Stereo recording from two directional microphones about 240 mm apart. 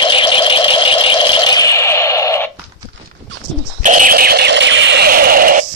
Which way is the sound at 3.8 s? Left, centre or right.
Right.